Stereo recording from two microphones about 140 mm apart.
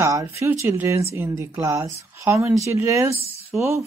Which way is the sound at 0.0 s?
25° right (ahead or behind).